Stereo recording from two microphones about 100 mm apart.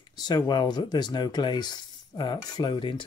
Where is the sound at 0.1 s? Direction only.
45° left (ahead or behind).